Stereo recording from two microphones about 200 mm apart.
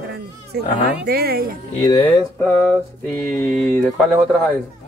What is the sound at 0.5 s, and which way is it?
Speech, 55° right (ahead or behind).